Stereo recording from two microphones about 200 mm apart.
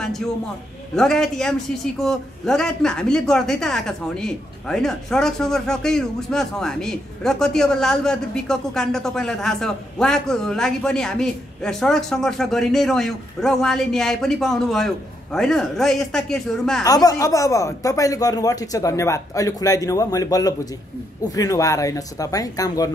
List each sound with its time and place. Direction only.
0.9 s speech: centre (ahead or behind)
16.8 s speech: 20° left (ahead or behind)